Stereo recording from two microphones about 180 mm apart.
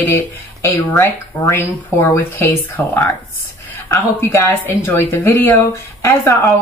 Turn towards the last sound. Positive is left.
turn(degrees=15)  # may be behind; listen again after turning